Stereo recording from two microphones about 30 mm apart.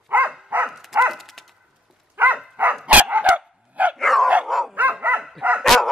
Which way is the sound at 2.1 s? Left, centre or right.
Right.